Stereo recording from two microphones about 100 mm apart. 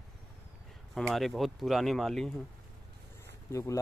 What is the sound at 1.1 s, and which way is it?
Speech, centre (ahead or behind).